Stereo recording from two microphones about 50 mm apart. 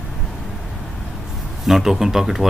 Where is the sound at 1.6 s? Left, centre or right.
Centre.